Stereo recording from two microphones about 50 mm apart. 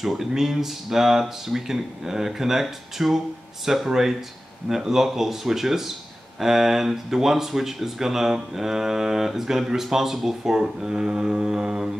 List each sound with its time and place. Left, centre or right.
0.0 s speech: centre